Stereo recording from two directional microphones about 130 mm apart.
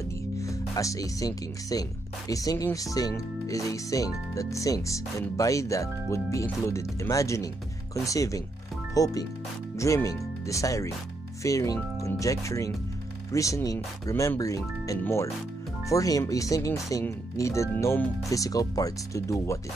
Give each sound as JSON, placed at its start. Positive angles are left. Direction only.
{"t": 0.4, "sound": "speech", "side_deg": 25}